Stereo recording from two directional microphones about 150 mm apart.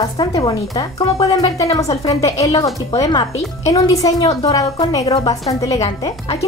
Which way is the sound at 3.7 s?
25° left (ahead or behind).